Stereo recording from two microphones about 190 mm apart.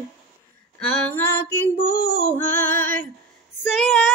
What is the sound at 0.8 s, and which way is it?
Female singing, 10° left (ahead or behind).